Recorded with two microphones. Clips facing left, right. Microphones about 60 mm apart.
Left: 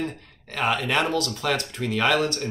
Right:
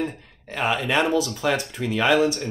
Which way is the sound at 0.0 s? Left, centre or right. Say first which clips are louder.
Right 2 dB; centre.